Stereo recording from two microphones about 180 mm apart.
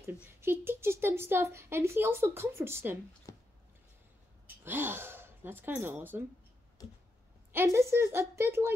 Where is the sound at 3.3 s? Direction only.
15° left (ahead or behind).